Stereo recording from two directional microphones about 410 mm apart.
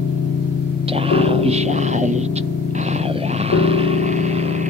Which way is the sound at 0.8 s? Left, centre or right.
Centre.